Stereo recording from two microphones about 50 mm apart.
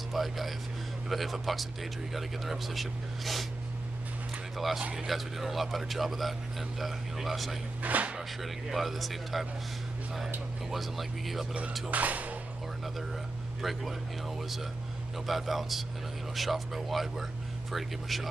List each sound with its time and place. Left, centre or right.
0.1 s speech: centre
4.9 s speech: centre
7.8 s speech: right
8.4 s speech: centre
10.7 s speech: centre
11.9 s speech: right
13.6 s speech: centre
15.2 s speech: centre